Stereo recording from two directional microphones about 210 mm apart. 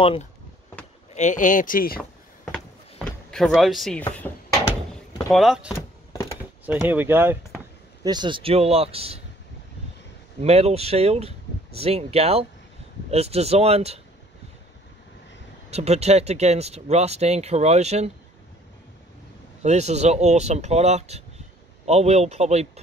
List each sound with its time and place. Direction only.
0.0 s speech: 25° left (ahead or behind)
1.1 s speech: 35° left (ahead or behind)
3.1 s speech: 5° left (ahead or behind)
5.3 s speech: centre (ahead or behind)
6.6 s a sound: 10° right (ahead or behind)
8.1 s speech: 20° right (ahead or behind)
10.4 s speech: 30° right (ahead or behind)
15.7 s speech: 30° right (ahead or behind)
19.6 s speech: 30° right (ahead or behind)